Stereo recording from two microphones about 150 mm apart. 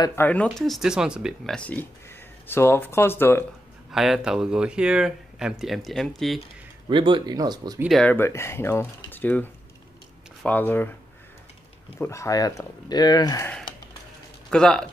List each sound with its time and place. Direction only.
0.0 s speech: 15° left (ahead or behind)
3.9 s speech: 5° right (ahead or behind)
6.9 s speech: 35° right (ahead or behind)
7.9 s speech: 10° left (ahead or behind)
12.0 s speech: 20° left (ahead or behind)
14.5 s speech: 5° left (ahead or behind)